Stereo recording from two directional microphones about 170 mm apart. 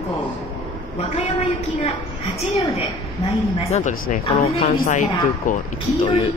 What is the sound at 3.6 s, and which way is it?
Speech, 45° left (ahead or behind).